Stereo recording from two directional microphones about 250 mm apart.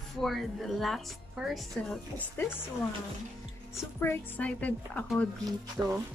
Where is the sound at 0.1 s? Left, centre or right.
Centre.